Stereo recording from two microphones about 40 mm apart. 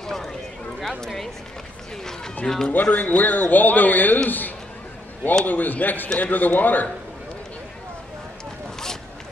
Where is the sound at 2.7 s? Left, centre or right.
Left.